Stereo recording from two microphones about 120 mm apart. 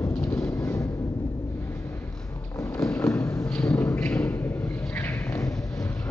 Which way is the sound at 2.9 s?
20° left (ahead or behind).